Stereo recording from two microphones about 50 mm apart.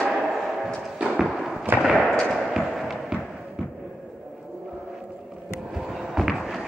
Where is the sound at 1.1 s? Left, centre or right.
Centre.